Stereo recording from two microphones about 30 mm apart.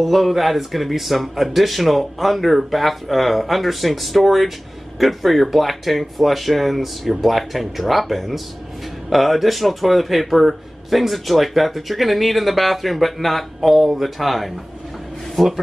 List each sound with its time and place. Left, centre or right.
0.0 s a man's voice: centre